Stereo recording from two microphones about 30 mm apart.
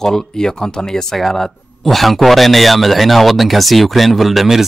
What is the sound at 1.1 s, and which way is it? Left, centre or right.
A man's voice, centre.